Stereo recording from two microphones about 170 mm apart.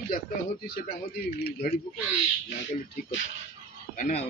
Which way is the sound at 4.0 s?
50° left (ahead or behind).